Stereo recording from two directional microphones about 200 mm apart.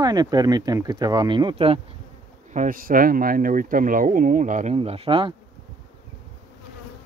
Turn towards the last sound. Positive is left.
turn(degrees=-25)  # may be behind; listen again after turning